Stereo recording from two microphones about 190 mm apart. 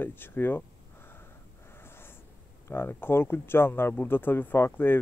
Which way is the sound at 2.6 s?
10° left (ahead or behind).